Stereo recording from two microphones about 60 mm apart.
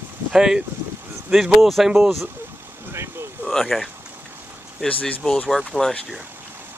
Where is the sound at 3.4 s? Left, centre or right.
Centre.